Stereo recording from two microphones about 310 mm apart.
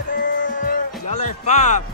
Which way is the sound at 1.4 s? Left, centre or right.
Left.